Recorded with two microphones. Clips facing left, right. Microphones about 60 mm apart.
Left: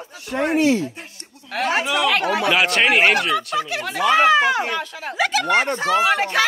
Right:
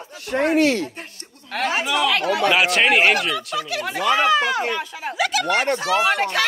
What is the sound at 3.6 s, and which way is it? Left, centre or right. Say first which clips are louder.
Speech: left 3 dB; left.